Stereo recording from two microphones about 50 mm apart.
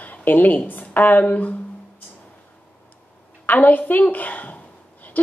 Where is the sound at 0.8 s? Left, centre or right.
Left.